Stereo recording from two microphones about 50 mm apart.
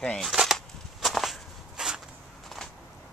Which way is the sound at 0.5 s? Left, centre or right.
Centre.